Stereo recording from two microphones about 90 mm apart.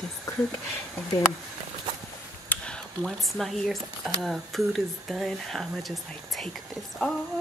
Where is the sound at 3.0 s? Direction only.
Centre (ahead or behind).